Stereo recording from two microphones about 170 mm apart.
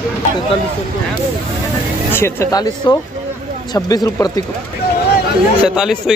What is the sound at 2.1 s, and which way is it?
A man's voice, 15° left (ahead or behind).